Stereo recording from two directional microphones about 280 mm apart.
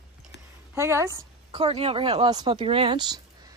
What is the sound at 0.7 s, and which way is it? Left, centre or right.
A woman's voice, centre.